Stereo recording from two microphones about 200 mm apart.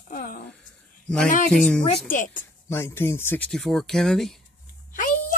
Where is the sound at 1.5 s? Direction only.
5° left (ahead or behind).